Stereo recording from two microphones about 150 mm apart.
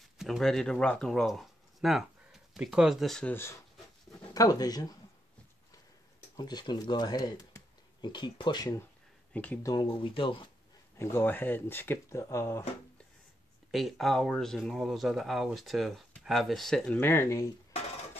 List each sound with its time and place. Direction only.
0.2 s speech: centre (ahead or behind)
4.2 s speech: 25° left (ahead or behind)
6.3 s speech: 30° left (ahead or behind)
9.3 s speech: 10° left (ahead or behind)
9.6 s speech: 25° left (ahead or behind)
9.8 s speech: 35° left (ahead or behind)
11.0 s speech: 15° left (ahead or behind)
13.7 s speech: centre (ahead or behind); by 17.5 s 15° left (ahead or behind)